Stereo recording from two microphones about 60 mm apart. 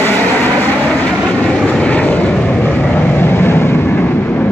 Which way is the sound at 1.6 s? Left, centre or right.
Centre.